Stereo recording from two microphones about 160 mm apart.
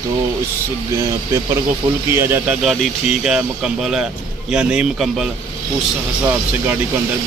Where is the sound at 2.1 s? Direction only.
15° right (ahead or behind).